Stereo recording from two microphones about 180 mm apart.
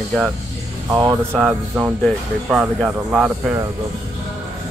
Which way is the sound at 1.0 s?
25° right (ahead or behind).